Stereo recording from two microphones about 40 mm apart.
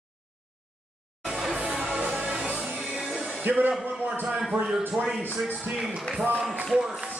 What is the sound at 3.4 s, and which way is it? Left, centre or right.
Speech, right.